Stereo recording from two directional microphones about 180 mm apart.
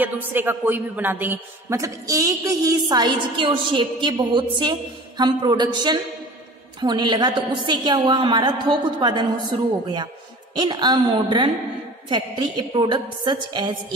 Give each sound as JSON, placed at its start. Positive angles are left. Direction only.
{"t": 0.0, "sound": "a man's voice", "side_deg": -10}